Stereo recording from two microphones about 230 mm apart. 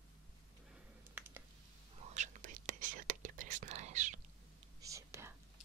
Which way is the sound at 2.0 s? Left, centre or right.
Right.